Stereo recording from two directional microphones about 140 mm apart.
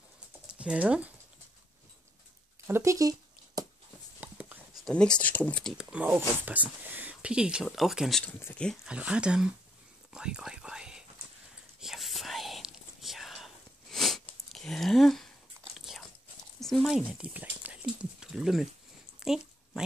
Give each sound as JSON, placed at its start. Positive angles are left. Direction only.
{"t": 0.6, "sound": "speech", "side_deg": -5}
{"t": 2.6, "sound": "a sound", "side_deg": -20}
{"t": 4.2, "sound": "writing", "side_deg": -10}
{"t": 4.8, "sound": "speech", "side_deg": 5}
{"t": 5.9, "sound": "speech", "side_deg": -10}
{"t": 8.8, "sound": "speech", "side_deg": -10}
{"t": 10.1, "sound": "whispering", "side_deg": -5}
{"t": 15.7, "sound": "biting", "side_deg": 0}
{"t": 16.5, "sound": "speech", "side_deg": 0}
{"t": 19.1, "sound": "a sound", "side_deg": -5}